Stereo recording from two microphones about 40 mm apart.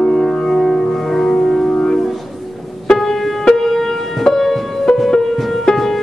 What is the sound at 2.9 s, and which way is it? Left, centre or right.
Music, centre.